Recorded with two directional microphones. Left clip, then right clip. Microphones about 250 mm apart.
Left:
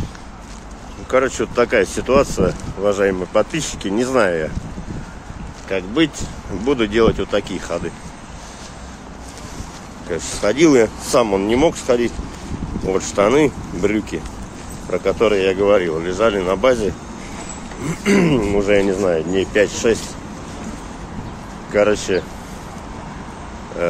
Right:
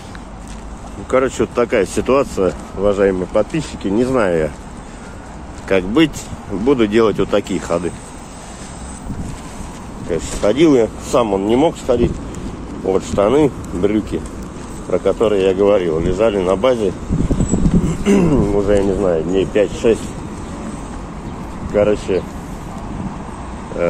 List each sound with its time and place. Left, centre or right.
1.1 s speech: centre
5.7 s speech: centre
6.6 s speech: centre
10.0 s speech: centre
18.0 s speech: centre
21.7 s speech: centre